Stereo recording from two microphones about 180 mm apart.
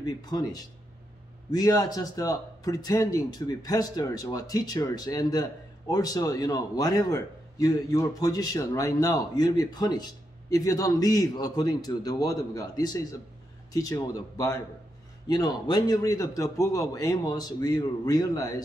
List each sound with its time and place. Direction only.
0.0 s speech: 20° left (ahead or behind)